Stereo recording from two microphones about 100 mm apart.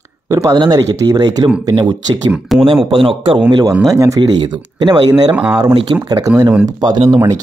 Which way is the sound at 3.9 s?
35° right (ahead or behind).